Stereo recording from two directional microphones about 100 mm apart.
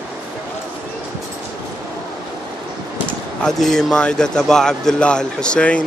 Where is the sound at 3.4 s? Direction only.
5° left (ahead or behind).